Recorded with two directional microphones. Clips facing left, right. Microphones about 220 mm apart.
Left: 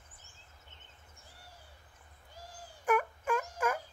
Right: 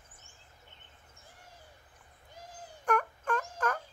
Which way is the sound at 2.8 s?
5° left (ahead or behind).